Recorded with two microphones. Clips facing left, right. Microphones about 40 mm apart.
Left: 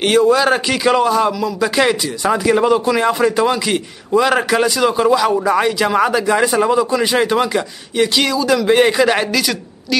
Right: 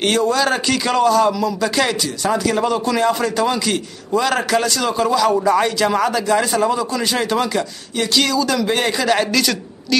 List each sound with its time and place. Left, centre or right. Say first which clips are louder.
0.0 s a man's voice: left 4 dB; centre